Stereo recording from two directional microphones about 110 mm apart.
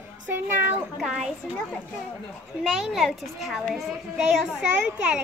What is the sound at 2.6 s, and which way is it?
A child's voice, centre (ahead or behind).